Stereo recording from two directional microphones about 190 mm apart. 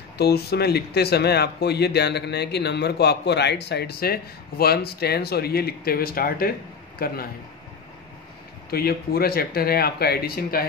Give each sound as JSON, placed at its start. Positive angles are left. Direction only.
{"t": 0.2, "sound": "speech", "side_deg": 55}
{"t": 8.6, "sound": "speech", "side_deg": 55}